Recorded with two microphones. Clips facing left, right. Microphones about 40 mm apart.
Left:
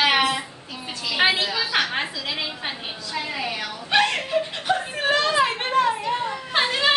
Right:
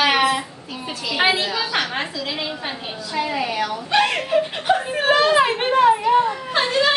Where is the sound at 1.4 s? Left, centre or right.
Centre.